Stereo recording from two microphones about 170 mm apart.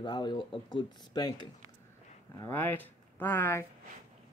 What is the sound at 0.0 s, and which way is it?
Speech, 25° left (ahead or behind).